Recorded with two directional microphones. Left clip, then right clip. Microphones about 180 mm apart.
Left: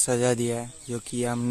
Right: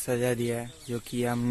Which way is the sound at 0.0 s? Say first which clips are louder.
Left 4 dB; 25° left (ahead or behind).